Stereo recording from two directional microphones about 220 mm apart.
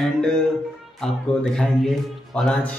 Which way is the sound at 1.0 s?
Centre (ahead or behind).